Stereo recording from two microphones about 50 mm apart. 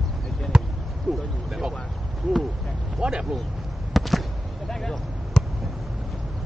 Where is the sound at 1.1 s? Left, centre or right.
Centre.